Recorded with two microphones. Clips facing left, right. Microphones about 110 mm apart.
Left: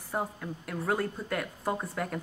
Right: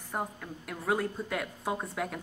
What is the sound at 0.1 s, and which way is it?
Speech, centre (ahead or behind).